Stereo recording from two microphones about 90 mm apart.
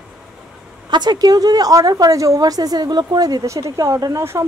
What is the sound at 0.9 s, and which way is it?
Speech, 50° right (ahead or behind).